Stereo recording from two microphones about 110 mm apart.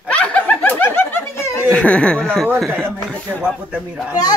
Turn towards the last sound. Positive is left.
turn(degrees=-10)  # may be behind; listen again after turning